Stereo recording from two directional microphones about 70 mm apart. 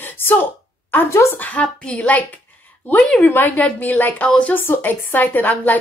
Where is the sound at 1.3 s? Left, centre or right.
Left.